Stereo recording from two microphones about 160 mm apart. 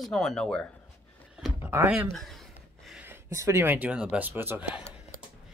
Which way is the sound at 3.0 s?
15° right (ahead or behind).